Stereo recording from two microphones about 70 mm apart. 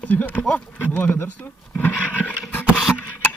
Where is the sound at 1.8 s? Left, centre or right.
Left.